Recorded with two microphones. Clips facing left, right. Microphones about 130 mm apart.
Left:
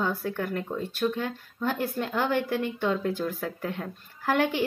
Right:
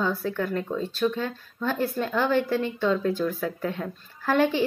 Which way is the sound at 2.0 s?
15° left (ahead or behind).